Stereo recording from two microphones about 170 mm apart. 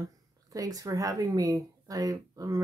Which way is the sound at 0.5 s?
20° right (ahead or behind).